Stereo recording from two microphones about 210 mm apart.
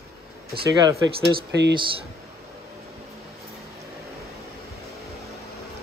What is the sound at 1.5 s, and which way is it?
Speech, 55° right (ahead or behind).